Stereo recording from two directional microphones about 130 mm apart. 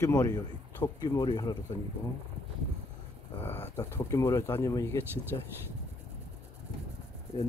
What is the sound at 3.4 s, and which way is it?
Speech, 15° left (ahead or behind).